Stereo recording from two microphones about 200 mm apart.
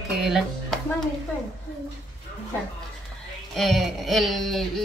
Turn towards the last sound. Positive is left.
turn(degrees=0)  # may be behind; listen again after turning